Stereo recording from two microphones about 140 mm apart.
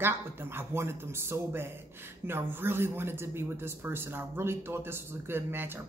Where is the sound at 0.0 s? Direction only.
15° right (ahead or behind).